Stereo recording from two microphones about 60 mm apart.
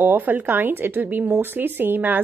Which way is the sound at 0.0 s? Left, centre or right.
Right.